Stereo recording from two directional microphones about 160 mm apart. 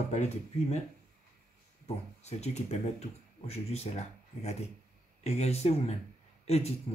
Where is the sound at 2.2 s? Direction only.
45° left (ahead or behind).